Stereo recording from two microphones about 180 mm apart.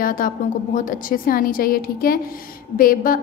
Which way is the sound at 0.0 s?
50° left (ahead or behind).